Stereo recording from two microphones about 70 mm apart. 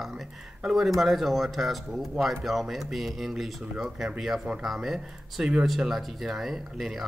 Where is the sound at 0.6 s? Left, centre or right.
Centre.